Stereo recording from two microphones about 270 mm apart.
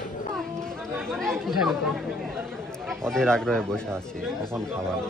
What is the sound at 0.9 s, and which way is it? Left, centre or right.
Speech, centre.